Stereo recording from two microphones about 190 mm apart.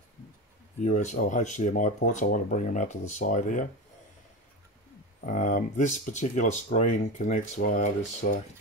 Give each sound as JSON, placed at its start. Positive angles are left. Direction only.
{"t": 0.8, "sound": "speech", "side_deg": 40}
{"t": 5.2, "sound": "speech", "side_deg": 45}